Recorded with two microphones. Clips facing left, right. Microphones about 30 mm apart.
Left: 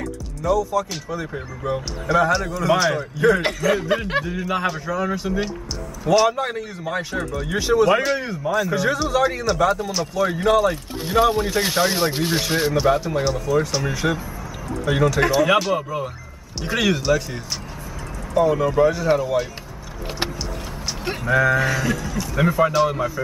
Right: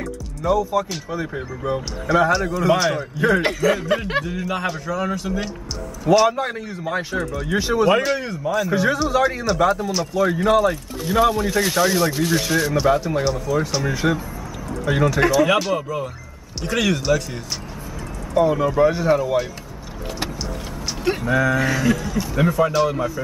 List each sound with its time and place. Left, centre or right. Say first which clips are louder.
0.4 s speech: right 1 dB; right
1.1 s speech: right 2 dB; centre
6.0 s speech: right 1 dB; centre
11.1 s speech: even; centre
11.9 s speech: right 2 dB; left
12.3 s speech: right 1 dB; centre
12.7 s speech: right 1 dB; centre
18.3 s speech: even; centre
19.1 s speech: right 1 dB; centre
21.0 s speech: even; centre